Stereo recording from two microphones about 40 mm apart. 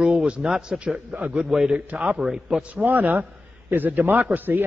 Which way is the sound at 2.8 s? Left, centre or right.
Right.